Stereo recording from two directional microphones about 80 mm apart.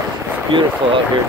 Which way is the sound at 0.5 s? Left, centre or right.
Right.